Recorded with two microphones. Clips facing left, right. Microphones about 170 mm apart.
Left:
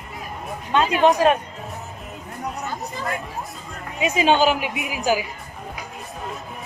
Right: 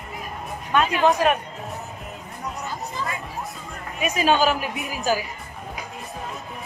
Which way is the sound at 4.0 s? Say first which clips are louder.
Left 2 dB; 20° left (ahead or behind).